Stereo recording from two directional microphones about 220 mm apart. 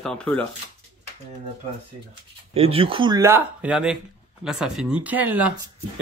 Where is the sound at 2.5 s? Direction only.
25° right (ahead or behind).